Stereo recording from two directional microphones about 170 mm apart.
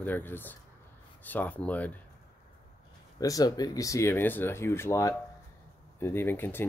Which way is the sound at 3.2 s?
20° left (ahead or behind).